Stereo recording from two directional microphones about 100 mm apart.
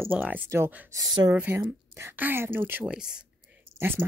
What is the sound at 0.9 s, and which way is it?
Speech, 40° right (ahead or behind).